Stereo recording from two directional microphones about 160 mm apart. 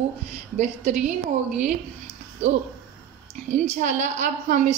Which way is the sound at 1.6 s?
45° right (ahead or behind).